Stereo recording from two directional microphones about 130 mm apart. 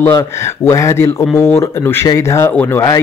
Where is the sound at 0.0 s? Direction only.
20° left (ahead or behind).